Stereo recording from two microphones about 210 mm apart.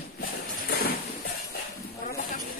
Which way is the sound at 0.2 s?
45° left (ahead or behind).